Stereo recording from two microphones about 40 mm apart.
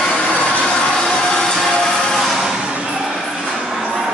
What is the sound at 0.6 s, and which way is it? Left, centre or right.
Music, centre.